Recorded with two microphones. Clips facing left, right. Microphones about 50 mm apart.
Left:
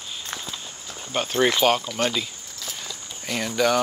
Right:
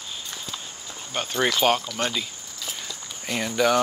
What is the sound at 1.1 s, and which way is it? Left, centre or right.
Speech, centre.